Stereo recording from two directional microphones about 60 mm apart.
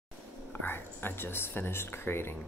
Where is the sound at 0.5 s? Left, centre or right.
Left.